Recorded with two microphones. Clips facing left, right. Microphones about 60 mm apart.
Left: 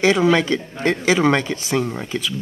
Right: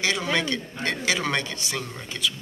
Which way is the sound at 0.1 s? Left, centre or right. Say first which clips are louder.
Left 9 dB; left.